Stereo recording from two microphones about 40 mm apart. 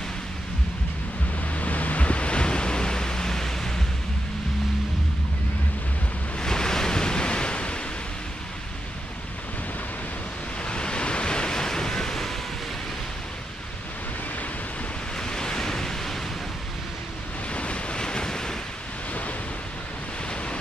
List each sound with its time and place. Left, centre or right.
1.5 s waves: left; by 3.8 s centre
6.4 s waves: centre
10.6 s waves: left; by 12.4 s centre
15.1 s waves: centre
17.5 s waves: left